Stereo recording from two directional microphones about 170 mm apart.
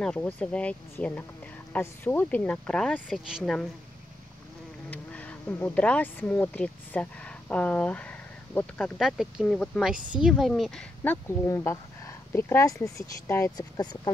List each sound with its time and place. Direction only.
0.0 s speech: 5° left (ahead or behind)
4.9 s speech: 10° left (ahead or behind)
11.2 s speech: 15° left (ahead or behind)